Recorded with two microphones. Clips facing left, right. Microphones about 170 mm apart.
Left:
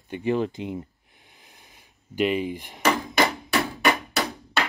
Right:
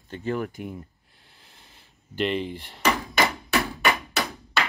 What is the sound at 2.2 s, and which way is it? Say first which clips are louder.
Speech: left 3 dB; 10° left (ahead or behind).